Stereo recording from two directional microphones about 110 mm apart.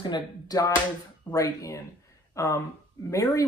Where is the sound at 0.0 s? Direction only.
40° left (ahead or behind).